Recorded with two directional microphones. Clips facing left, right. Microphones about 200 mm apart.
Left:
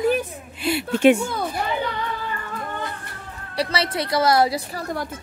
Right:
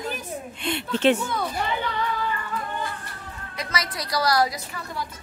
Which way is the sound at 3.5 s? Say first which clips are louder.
Left 7 dB; 30° left (ahead or behind).